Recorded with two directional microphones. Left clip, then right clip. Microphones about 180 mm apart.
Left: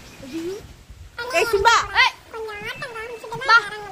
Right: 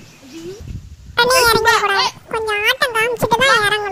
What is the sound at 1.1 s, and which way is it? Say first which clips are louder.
A child's voice: right 9 dB; 60° right (ahead or behind).